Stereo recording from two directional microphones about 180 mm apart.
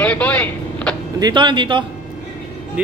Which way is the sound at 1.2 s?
25° right (ahead or behind).